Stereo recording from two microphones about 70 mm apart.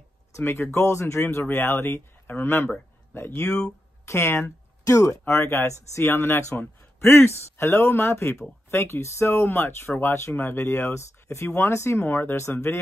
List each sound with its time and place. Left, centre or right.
0.4 s speech: left